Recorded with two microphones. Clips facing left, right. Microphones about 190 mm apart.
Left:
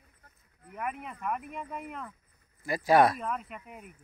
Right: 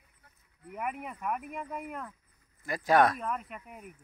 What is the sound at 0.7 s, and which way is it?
Speech, 10° right (ahead or behind).